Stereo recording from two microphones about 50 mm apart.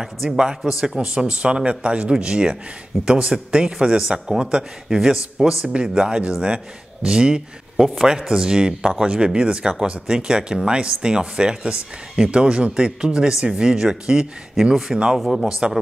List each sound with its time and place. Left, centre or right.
0.6 s speech: centre
0.9 s speech: centre
3.7 s speech: centre